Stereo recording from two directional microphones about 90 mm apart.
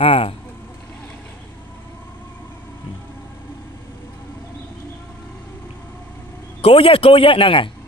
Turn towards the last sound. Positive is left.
turn(degrees=70)  # may be behind; listen again after turning